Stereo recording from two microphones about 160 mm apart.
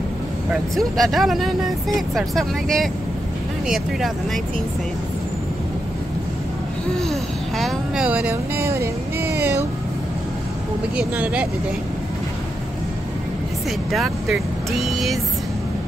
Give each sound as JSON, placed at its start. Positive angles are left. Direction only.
{"t": 0.5, "sound": "speech", "side_deg": 0}
{"t": 7.0, "sound": "speech", "side_deg": 0}
{"t": 11.0, "sound": "speech", "side_deg": -10}
{"t": 13.7, "sound": "speech", "side_deg": 0}